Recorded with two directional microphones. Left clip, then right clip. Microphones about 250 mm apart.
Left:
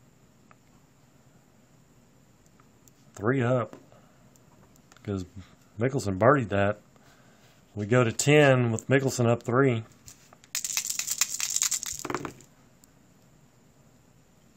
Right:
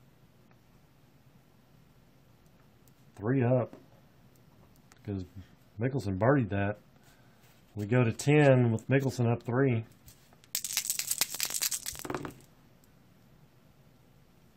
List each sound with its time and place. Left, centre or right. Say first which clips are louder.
3.2 s speech: left 3 dB; left
5.0 s speech: left 6 dB; left
7.8 s speech: left 6 dB; left
10.7 s crushing: left 2 dB; centre